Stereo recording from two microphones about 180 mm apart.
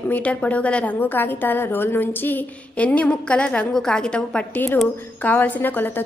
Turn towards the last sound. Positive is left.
turn(degrees=10)  # may be behind; listen again after turning